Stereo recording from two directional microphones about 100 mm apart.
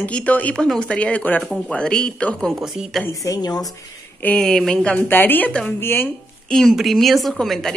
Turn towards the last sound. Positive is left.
turn(degrees=5)  # may be behind; listen again after turning